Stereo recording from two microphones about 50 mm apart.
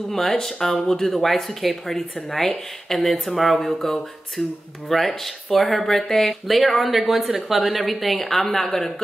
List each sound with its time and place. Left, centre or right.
0.1 s speech: centre
8.6 s speech: left